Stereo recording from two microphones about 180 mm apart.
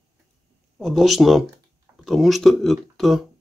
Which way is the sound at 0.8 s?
Centre (ahead or behind).